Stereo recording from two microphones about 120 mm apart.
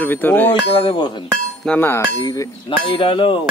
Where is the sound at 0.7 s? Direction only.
45° left (ahead or behind).